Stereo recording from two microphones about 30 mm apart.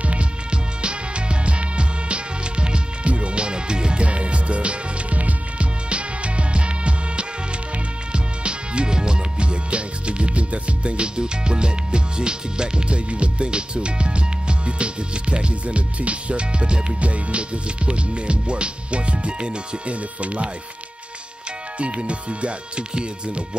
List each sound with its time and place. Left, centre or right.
0.0 s music: right
19.9 s speech: right
21.7 s speech: right